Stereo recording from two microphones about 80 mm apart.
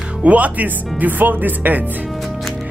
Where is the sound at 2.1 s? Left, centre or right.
Centre.